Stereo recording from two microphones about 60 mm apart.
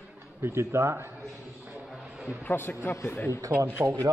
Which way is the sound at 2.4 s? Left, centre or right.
Left.